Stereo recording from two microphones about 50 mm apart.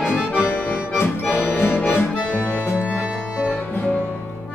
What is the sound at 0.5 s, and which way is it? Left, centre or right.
Accordion, left.